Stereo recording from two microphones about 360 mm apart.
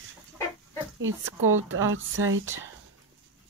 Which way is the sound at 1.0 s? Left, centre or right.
Right.